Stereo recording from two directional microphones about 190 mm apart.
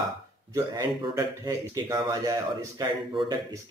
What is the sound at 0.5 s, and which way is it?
Speech, 15° right (ahead or behind).